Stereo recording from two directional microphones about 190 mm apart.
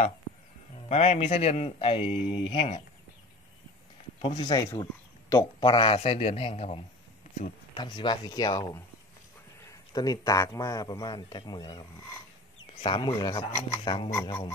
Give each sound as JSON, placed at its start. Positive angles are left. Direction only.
{"t": 0.8, "sound": "a man's voice", "side_deg": 35}
{"t": 4.2, "sound": "a man's voice", "side_deg": 25}